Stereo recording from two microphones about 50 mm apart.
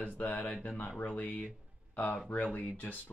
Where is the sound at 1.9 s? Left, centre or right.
Left.